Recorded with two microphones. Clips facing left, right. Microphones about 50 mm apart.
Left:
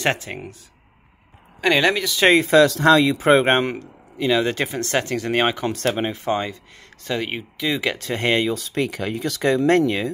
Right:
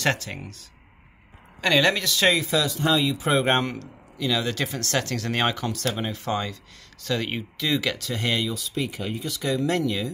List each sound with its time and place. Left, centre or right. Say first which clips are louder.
0.0 s speech: left 3 dB; left
2.2 s speech: left 8 dB; left
2.6 s speech: left 8 dB; left
3.2 s speech: left 6 dB; left
3.5 s speech: left 4 dB; left
8.8 s speech: left 5 dB; left